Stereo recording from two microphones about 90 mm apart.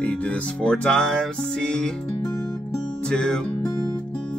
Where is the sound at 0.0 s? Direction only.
15° left (ahead or behind).